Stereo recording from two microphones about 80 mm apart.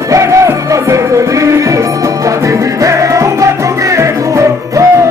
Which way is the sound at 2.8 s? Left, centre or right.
Right.